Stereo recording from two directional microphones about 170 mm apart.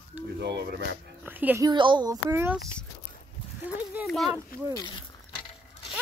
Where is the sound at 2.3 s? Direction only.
15° right (ahead or behind).